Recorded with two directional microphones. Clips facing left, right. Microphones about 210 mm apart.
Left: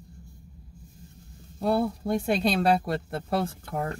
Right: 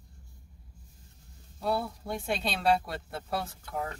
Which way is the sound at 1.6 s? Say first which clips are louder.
Left 6 dB; 50° left (ahead or behind).